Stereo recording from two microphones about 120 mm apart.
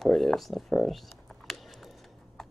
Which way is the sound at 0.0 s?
5° left (ahead or behind).